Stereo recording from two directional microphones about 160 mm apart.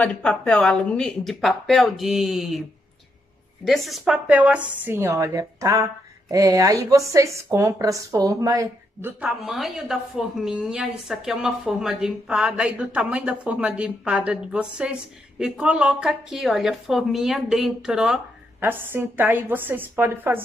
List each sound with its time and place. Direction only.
0.0 s a woman's voice: 10° left (ahead or behind)
3.6 s a woman's voice: centre (ahead or behind); by 9.1 s 20° right (ahead or behind)
9.2 s a woman's voice: centre (ahead or behind)